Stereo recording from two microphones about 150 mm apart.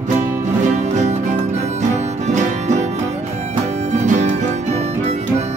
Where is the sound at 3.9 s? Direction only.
55° right (ahead or behind).